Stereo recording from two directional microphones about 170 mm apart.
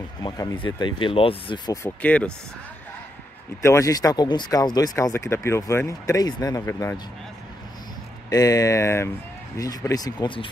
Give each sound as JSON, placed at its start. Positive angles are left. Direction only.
{"t": 0.2, "sound": "speech", "side_deg": 25}
{"t": 2.0, "sound": "speech", "side_deg": 5}
{"t": 3.6, "sound": "speech", "side_deg": 20}
{"t": 8.3, "sound": "speech", "side_deg": 20}